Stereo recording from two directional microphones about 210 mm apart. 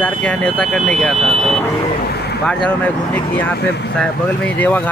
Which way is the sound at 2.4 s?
5° left (ahead or behind).